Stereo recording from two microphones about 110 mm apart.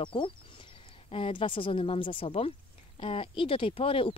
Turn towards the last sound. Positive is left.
turn(degrees=55)  # may be behind; listen again after turning